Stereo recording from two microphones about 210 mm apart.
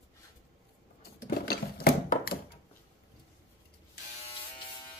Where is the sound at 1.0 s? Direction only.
45° left (ahead or behind).